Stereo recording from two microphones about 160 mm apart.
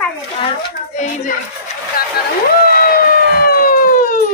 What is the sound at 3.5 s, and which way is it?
Emergency vehicle, 65° left (ahead or behind).